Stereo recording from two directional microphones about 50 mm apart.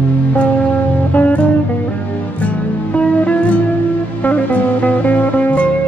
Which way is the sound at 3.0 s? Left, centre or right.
Left.